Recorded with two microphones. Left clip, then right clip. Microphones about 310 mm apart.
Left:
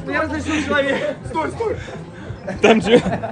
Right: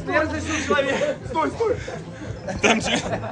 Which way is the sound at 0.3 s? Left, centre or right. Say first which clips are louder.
Left 4 dB; centre.